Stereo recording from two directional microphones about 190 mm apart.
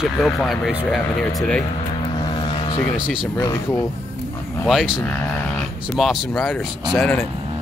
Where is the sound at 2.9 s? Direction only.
5° right (ahead or behind).